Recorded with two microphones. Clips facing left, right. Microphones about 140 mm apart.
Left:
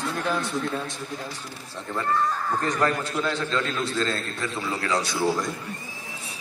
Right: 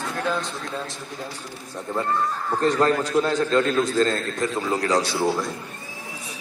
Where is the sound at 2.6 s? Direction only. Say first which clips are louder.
Right 7 dB; 30° right (ahead or behind).